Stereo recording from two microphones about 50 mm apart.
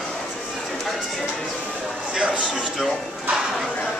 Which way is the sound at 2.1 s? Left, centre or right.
Right.